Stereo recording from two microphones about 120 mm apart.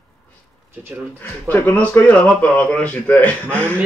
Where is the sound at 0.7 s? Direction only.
20° right (ahead or behind).